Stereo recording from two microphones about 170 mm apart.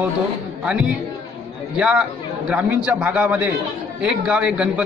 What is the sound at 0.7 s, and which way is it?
A man's voice, 5° right (ahead or behind).